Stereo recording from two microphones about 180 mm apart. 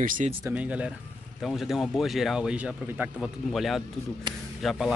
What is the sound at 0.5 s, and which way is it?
Speech, 5° right (ahead or behind).